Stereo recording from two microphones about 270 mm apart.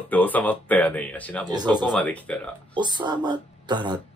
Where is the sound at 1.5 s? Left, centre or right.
Centre.